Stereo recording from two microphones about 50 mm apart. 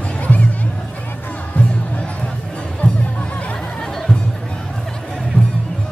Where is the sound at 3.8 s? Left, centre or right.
Centre.